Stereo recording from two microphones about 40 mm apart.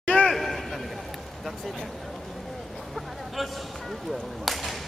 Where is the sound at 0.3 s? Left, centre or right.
Centre.